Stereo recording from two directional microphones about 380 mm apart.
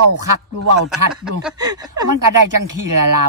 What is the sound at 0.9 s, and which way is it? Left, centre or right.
Speech, centre.